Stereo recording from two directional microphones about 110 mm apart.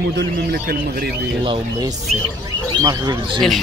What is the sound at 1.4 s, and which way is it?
Speech, 50° right (ahead or behind).